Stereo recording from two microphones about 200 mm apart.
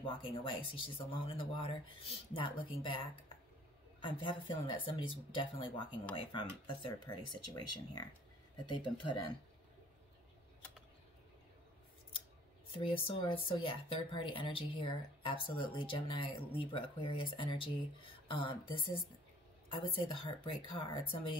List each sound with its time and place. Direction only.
0.0 s speech: 25° left (ahead or behind)
4.0 s speech: 25° left (ahead or behind)
12.7 s speech: 25° left (ahead or behind)